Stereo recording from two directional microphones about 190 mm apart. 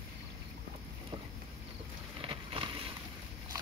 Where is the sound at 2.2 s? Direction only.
30° right (ahead or behind).